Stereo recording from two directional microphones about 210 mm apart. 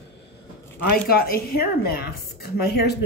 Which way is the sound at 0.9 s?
45° left (ahead or behind).